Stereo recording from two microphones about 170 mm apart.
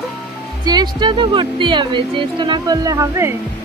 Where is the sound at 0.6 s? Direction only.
25° right (ahead or behind).